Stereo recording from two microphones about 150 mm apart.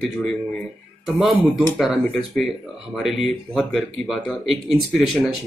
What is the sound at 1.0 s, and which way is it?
Speech, centre (ahead or behind).